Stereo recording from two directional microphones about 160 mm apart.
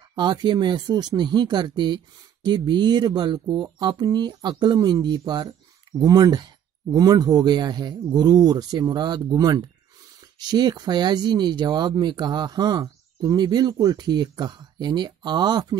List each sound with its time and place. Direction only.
0.1 s speech: 30° right (ahead or behind)